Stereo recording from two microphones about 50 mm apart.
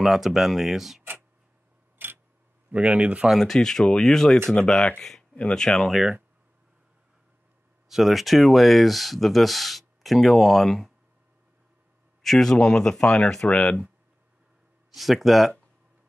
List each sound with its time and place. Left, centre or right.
0.0 s speech: centre
2.0 s a sound: right
2.7 s speech: right
3.3 s speech: centre
5.3 s speech: left
5.6 s speech: centre
7.9 s speech: centre
12.2 s speech: centre
15.0 s speech: centre